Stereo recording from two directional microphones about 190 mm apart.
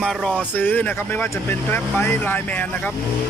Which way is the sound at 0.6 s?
10° left (ahead or behind).